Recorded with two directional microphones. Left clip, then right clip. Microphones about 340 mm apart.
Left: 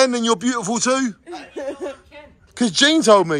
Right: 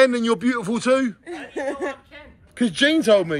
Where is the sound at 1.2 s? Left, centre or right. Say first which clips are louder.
Right 1 dB; right.